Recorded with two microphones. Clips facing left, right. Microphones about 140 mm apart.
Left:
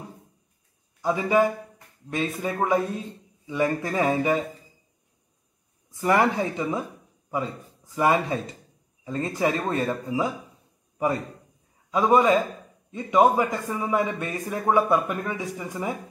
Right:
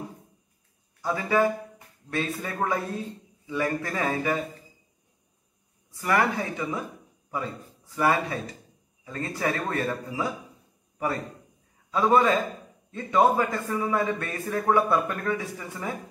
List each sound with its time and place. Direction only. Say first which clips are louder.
1.0 s a man's voice: left 2 dB; 20° left (ahead or behind)
5.9 s speech: left 3 dB; 25° left (ahead or behind)
7.9 s speech: left 2 dB; 20° left (ahead or behind)
11.9 s a man's voice: left 2 dB; 15° left (ahead or behind)